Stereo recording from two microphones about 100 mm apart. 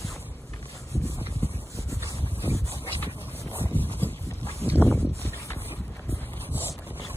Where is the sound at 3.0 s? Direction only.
20° left (ahead or behind).